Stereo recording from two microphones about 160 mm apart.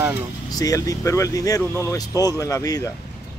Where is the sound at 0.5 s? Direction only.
20° left (ahead or behind).